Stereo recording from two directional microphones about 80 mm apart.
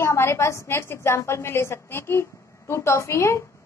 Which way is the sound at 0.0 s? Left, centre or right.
Left.